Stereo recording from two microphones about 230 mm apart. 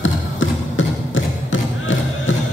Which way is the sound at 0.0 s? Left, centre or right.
Left.